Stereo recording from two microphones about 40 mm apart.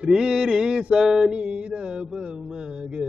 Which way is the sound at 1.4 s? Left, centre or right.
Right.